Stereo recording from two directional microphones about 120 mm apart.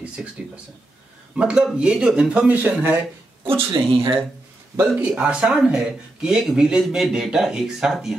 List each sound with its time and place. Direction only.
0.0 s a sound: 10° right (ahead or behind)
1.3 s speech: 5° right (ahead or behind)
3.4 s speech: 45° right (ahead or behind)
4.9 s speech: 10° right (ahead or behind)